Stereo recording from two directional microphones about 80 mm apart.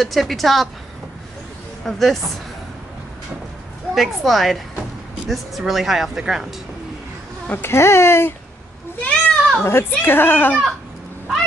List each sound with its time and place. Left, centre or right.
0.0 s speech: centre
1.9 s speech: centre
3.9 s speech: centre
7.4 s speech: left
9.0 s goat: centre
9.7 s speech: left